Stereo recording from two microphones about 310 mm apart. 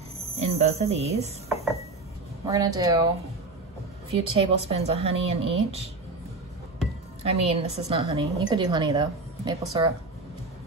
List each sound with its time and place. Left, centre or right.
0.4 s cricket: centre
2.4 s a woman's voice: centre
4.1 s speech: centre
7.2 s a woman's voice: centre